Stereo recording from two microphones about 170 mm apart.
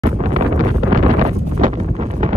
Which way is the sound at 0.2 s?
40° right (ahead or behind).